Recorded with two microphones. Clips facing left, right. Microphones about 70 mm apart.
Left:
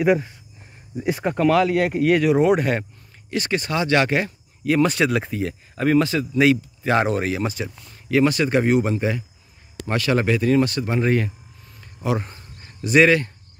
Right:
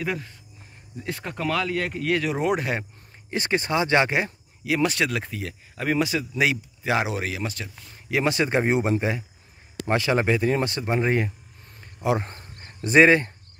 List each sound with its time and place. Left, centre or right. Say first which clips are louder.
0.0 s speech: left 11 dB; centre
3.3 s speech: left 1 dB; right
4.6 s speech: left 5 dB; centre
8.1 s speech: left 4 dB; centre
11.8 s a sound: even; centre
12.3 s a sound: right 1 dB; right